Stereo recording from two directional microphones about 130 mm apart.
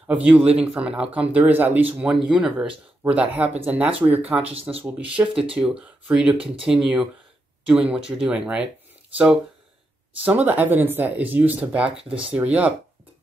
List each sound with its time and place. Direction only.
0.0 s speech: 10° right (ahead or behind)
4.6 s speech: 50° right (ahead or behind)
4.8 s speech: 10° right (ahead or behind)